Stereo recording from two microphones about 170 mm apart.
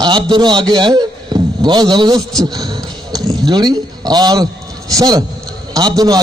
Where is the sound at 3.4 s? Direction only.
25° right (ahead or behind).